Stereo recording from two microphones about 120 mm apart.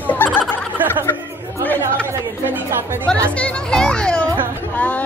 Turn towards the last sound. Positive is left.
turn(degrees=10)  # may be behind; listen again after turning